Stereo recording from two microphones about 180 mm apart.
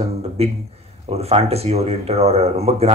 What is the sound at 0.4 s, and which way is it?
Speech, 35° right (ahead or behind).